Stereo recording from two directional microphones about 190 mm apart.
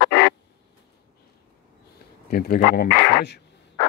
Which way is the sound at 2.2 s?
50° left (ahead or behind).